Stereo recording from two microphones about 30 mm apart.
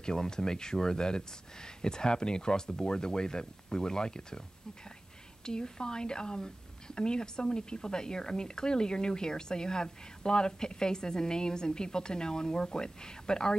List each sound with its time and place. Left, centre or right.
0.3 s speech: left
5.4 s speech: left